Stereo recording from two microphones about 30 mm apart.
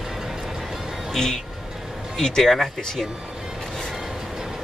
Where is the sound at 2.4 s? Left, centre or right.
Centre.